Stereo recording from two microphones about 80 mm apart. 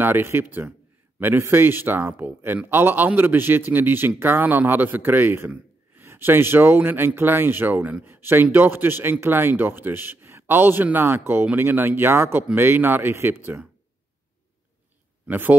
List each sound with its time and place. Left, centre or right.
0.0 s speech: right
15.2 s a man's voice: right